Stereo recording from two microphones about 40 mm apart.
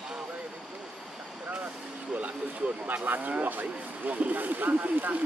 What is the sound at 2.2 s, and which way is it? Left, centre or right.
Speech, right.